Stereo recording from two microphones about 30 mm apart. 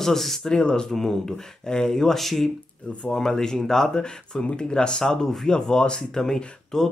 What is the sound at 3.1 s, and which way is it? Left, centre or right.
Speech, left.